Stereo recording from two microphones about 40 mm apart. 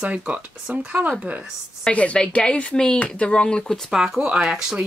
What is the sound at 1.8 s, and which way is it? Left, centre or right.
Speech, left.